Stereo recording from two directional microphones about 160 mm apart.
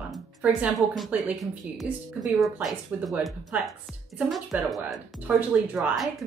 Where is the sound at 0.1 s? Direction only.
5° right (ahead or behind).